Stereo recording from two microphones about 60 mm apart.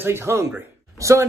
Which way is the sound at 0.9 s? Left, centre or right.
Right.